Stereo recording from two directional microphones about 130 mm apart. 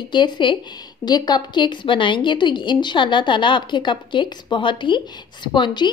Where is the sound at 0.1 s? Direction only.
35° left (ahead or behind).